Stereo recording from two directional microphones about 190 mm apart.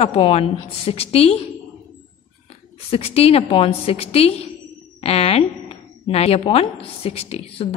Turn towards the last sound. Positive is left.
turn(degrees=30)  # may be behind; listen again after turning